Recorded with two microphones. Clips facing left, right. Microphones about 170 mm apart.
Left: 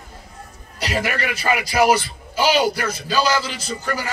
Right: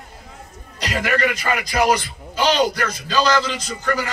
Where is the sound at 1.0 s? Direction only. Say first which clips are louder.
Right 3 dB; 10° left (ahead or behind).